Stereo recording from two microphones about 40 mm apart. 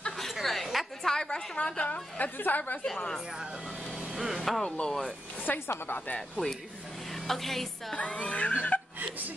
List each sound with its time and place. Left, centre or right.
0.2 s a sound: centre
1.0 s a sound: centre
1.8 s a woman's voice: left
4.1 s vehicle: centre
4.4 s speech: centre
5.5 s a woman's voice: left
6.1 s speech: centre
7.1 s a sound: centre
7.9 s music: left